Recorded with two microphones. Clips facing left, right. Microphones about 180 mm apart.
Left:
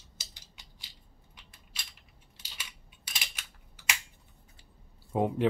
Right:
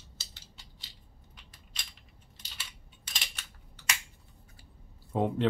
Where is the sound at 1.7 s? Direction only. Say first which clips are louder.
Even; 10° left (ahead or behind).